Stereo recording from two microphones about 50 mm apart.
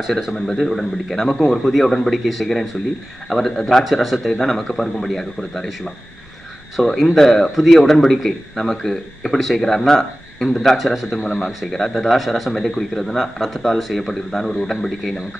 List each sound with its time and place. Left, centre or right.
0.6 s speech: centre
6.8 s speech: centre
7.2 s speech: centre
11.1 s speech: centre
11.9 s speech: centre